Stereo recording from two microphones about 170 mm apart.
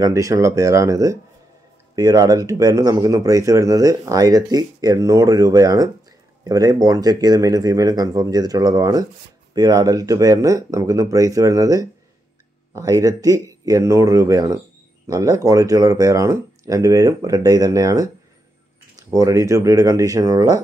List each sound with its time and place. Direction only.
0.0 s speech: 20° right (ahead or behind)
19.0 s speech: 20° right (ahead or behind)